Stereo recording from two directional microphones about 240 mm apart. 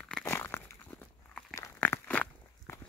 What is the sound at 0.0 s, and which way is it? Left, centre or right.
Crumpling, centre.